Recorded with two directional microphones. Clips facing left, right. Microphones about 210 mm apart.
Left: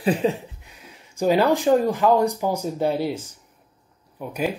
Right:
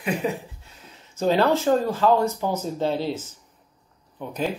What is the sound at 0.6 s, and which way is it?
Speech, 15° left (ahead or behind).